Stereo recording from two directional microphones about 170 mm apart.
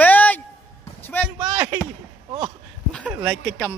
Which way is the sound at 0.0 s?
10° left (ahead or behind).